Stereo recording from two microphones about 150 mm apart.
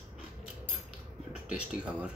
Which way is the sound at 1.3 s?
5° right (ahead or behind).